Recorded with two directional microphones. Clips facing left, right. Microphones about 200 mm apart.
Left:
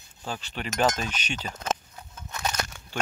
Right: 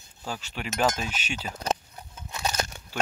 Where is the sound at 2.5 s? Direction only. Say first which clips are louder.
Right 2 dB; 30° right (ahead or behind).